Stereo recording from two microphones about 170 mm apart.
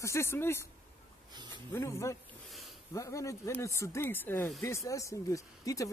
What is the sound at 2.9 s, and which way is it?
Speech, 20° left (ahead or behind).